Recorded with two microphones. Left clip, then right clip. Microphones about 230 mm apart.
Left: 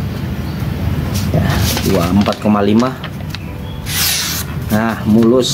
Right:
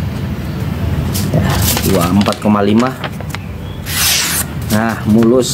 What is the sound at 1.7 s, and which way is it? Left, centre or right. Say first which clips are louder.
Speech: right 2 dB; right.